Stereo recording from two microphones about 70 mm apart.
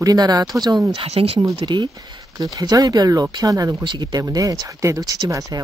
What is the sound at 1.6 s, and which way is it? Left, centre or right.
Speech, right.